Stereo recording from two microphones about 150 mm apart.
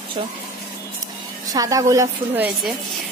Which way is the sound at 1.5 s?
25° right (ahead or behind).